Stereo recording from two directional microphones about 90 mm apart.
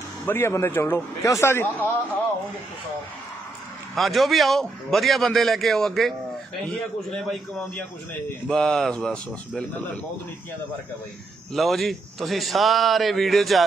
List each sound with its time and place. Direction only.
0.2 s speech: 25° left (ahead or behind)
3.9 s a man's voice: centre (ahead or behind)
11.5 s a man's voice: centre (ahead or behind)